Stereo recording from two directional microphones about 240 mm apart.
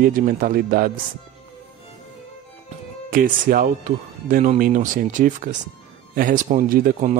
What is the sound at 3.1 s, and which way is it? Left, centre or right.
Speech, right.